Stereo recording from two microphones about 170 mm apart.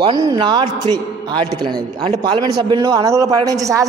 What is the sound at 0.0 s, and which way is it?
A man's voice, 25° right (ahead or behind).